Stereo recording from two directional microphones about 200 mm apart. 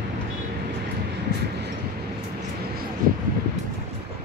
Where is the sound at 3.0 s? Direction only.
45° right (ahead or behind).